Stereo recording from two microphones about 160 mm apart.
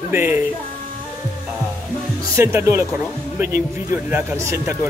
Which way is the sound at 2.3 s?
15° right (ahead or behind).